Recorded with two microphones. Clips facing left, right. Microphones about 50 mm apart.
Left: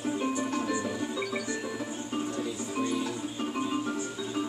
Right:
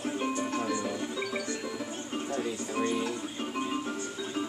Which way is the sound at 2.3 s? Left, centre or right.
Right.